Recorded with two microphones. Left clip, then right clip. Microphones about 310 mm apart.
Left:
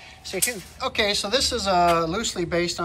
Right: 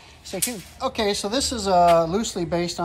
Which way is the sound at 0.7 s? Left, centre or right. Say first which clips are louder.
Even; centre.